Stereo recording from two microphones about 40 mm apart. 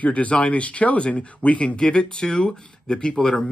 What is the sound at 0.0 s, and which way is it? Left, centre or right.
Speech, left.